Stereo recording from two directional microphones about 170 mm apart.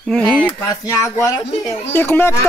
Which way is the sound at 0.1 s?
5° left (ahead or behind).